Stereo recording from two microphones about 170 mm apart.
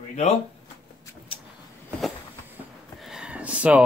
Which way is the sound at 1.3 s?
30° left (ahead or behind).